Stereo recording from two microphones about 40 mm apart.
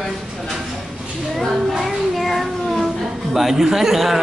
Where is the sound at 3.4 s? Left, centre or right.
Centre.